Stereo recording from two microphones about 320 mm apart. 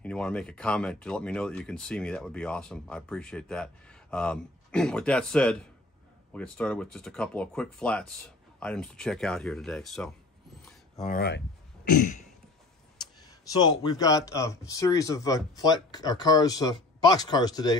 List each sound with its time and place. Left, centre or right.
0.0 s speech: centre
11.0 s speech: left
13.3 s speech: centre